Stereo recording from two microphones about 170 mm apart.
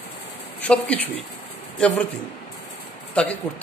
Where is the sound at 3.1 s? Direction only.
5° left (ahead or behind).